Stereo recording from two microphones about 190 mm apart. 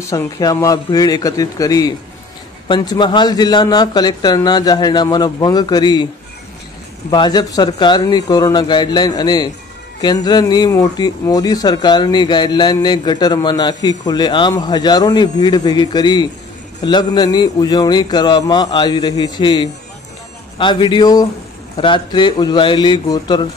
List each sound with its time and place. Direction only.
0.0 s a man's voice: 15° left (ahead or behind)
7.1 s speech: 20° left (ahead or behind)